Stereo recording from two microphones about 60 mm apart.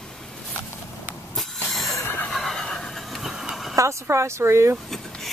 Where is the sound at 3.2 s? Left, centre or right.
Centre.